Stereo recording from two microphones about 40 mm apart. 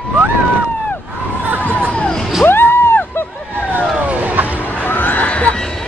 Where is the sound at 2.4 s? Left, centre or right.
Left.